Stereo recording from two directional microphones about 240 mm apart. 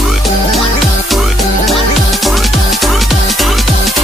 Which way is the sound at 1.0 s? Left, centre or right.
Centre.